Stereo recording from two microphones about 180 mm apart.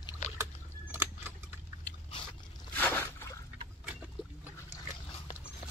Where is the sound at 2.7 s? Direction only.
10° left (ahead or behind).